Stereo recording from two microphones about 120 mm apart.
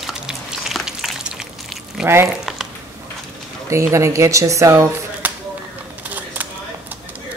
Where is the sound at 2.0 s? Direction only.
5° right (ahead or behind).